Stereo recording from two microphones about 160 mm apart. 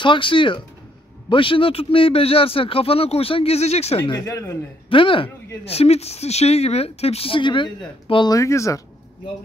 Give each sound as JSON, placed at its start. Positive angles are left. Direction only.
{"t": 0.0, "sound": "speech", "side_deg": 30}
{"t": 4.0, "sound": "speech", "side_deg": 25}
{"t": 4.8, "sound": "speech", "side_deg": 35}